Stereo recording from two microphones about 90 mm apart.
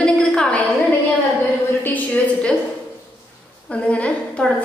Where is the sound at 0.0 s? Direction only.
10° left (ahead or behind).